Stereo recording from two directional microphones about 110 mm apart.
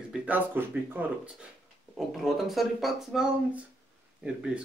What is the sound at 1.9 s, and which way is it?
Speech, centre (ahead or behind).